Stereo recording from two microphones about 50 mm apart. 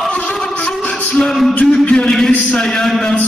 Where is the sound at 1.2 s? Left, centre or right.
Centre.